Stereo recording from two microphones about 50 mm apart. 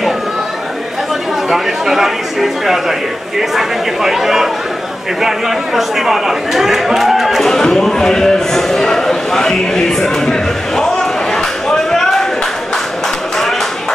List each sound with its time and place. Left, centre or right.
1.5 s a man's voice: centre
5.8 s a man's voice: centre
7.4 s speech: centre
11.3 s a sound: centre